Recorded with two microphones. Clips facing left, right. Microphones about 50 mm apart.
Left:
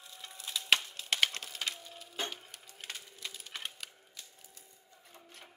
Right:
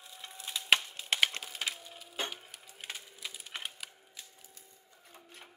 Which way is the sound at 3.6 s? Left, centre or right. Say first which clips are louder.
Right 1 dB; centre.